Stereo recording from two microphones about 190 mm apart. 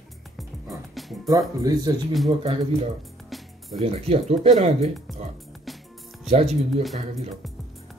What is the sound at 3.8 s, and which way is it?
Speech, 30° right (ahead or behind).